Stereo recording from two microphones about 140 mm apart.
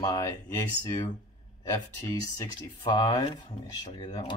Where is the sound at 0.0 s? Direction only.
25° left (ahead or behind).